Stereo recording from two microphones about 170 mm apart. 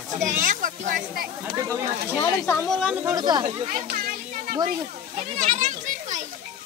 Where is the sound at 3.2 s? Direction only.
25° right (ahead or behind).